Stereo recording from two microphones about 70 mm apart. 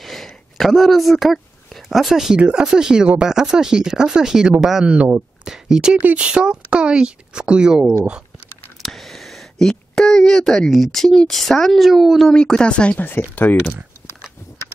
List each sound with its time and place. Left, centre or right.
0.0 s speech: centre
5.9 s speech: centre
8.8 s a sound: centre
10.7 s speech: centre
12.4 s speech: centre